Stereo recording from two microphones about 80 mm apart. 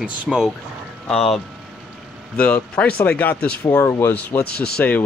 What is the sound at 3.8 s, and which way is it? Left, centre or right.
Speech, left.